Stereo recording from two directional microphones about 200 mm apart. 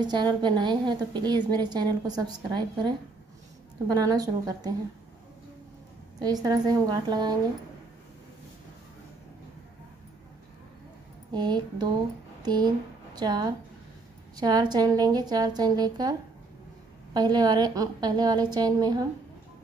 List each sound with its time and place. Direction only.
0.0 s a woman's voice: 20° right (ahead or behind)
3.9 s a woman's voice: 20° right (ahead or behind)
6.1 s a woman's voice: 20° right (ahead or behind)
11.3 s a woman's voice: 20° right (ahead or behind)